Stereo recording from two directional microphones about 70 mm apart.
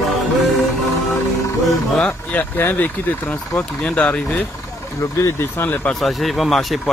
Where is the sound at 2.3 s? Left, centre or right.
Left.